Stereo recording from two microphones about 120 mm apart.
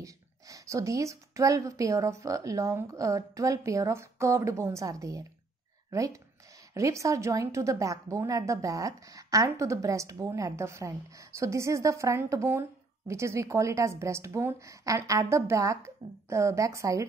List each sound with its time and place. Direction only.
0.0 s a woman's voice: 30° right (ahead or behind)